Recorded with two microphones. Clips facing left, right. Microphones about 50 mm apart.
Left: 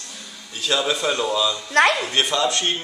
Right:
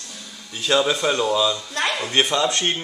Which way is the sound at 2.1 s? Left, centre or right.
Centre.